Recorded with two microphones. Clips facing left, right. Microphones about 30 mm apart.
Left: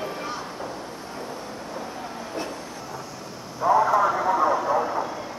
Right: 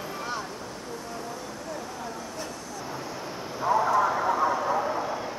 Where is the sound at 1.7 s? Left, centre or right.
Left.